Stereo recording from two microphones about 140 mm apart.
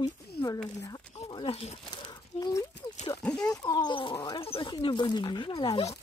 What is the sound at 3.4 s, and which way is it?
Speech, 25° left (ahead or behind).